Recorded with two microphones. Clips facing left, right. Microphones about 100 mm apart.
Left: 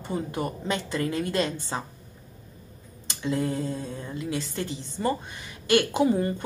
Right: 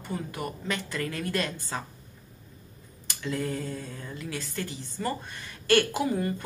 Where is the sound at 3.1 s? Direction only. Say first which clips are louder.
Left 4 dB; 25° left (ahead or behind).